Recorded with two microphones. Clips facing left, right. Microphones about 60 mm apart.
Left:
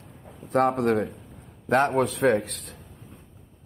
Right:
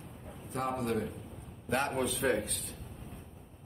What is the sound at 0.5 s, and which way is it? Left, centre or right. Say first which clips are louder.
Speech: left 12 dB; left.